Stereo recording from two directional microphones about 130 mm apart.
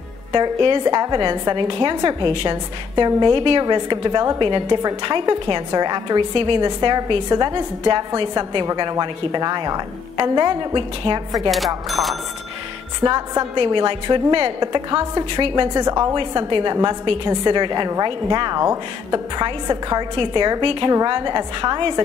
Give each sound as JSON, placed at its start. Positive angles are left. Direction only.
{"t": 0.3, "sound": "a woman's voice", "side_deg": -35}
{"t": 11.5, "sound": "speech", "side_deg": 0}
{"t": 13.0, "sound": "a woman's voice", "side_deg": -30}
{"t": 16.2, "sound": "a woman's voice", "side_deg": -40}